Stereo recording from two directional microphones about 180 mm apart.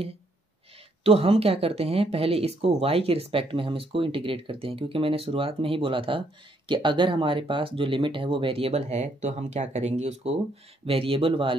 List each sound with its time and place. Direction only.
1.0 s speech: 35° right (ahead or behind)